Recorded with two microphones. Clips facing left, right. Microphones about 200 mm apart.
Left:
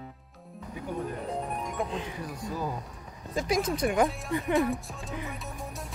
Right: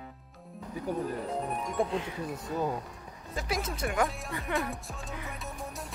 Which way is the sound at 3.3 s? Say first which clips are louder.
Left 6 dB; 15° left (ahead or behind).